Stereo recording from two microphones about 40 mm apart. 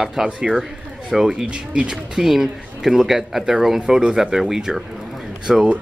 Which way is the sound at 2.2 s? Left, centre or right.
Centre.